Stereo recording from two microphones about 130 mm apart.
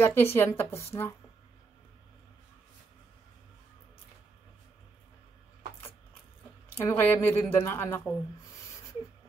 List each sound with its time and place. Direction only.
0.0 s a woman's voice: 20° left (ahead or behind)
6.8 s a woman's voice: 20° left (ahead or behind)